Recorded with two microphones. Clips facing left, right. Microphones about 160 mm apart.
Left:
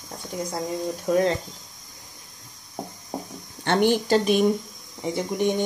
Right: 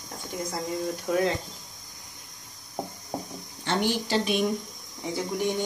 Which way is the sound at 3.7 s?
55° left (ahead or behind).